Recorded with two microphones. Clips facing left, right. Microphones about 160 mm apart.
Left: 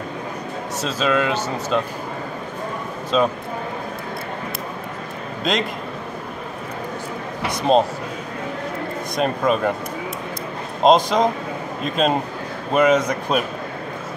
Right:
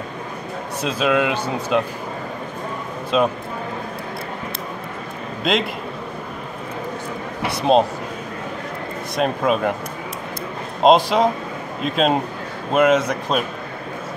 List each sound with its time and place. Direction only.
0.7 s speech: 10° right (ahead or behind)
3.1 s speech: 5° right (ahead or behind)
5.4 s a man's voice: 5° right (ahead or behind)
7.4 s speech: centre (ahead or behind)
9.1 s speech: 5° right (ahead or behind)
10.8 s speech: 5° right (ahead or behind)